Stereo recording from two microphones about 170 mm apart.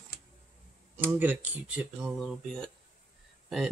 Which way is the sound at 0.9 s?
10° right (ahead or behind).